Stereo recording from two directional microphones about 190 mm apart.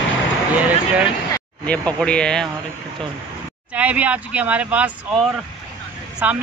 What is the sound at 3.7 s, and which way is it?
Speech, 5° right (ahead or behind).